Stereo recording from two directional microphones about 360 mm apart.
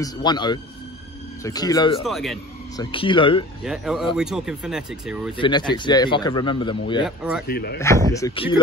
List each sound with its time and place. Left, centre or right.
0.0 s speech: centre
2.0 s speech: centre
2.8 s speech: centre
3.6 s speech: centre
5.4 s speech: centre
7.1 s speech: centre
7.4 s speech: left
7.8 s speech: centre